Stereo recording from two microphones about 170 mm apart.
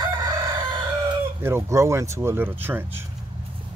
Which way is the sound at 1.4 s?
15° right (ahead or behind).